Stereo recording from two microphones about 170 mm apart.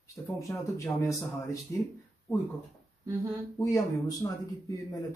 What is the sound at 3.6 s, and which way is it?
Speech, 20° left (ahead or behind).